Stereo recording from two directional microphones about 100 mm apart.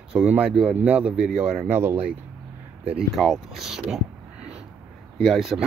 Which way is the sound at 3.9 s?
10° right (ahead or behind).